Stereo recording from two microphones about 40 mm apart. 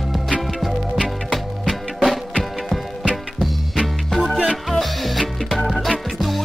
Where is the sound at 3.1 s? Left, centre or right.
Centre.